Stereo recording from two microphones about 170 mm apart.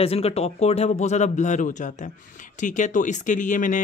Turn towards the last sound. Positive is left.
turn(degrees=50)  # may be behind; listen again after turning